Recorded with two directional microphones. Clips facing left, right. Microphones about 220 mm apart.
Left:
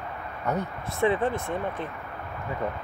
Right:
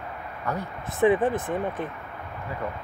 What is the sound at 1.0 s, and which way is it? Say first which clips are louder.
Speech: right 4 dB; 15° right (ahead or behind).